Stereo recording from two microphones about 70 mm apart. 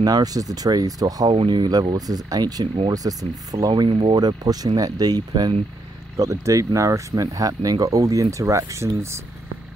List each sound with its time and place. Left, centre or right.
0.0 s speech: right
6.1 s speech: right